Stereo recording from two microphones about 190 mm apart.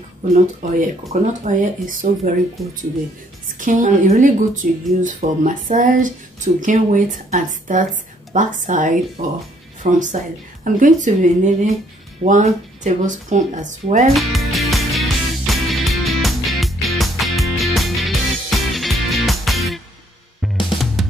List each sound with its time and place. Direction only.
0.3 s speech: 40° right (ahead or behind)
3.5 s speech: 40° right (ahead or behind)
14.1 s music: centre (ahead or behind)
20.8 s music: centre (ahead or behind)